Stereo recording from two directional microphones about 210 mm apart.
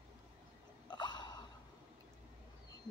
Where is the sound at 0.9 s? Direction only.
20° left (ahead or behind).